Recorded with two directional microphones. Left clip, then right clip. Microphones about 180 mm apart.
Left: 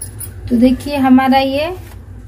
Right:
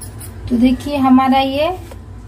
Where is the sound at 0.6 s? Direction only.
20° left (ahead or behind).